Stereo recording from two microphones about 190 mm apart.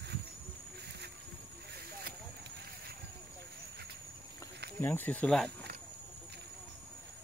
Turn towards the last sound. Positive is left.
turn(degrees=5)  # may be behind; listen again after turning